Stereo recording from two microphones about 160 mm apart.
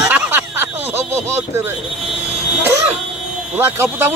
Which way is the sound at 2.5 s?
15° right (ahead or behind).